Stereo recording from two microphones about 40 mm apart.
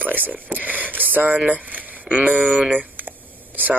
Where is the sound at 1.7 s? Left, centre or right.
Right.